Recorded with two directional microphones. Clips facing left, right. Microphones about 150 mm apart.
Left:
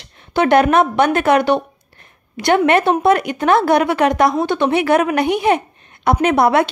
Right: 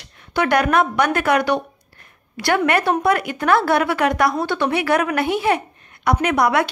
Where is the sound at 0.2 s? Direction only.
25° left (ahead or behind).